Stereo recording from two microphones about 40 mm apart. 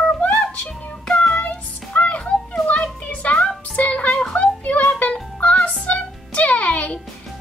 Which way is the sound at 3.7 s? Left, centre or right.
Left.